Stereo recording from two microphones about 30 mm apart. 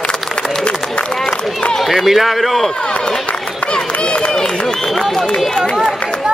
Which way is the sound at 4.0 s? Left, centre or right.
Left.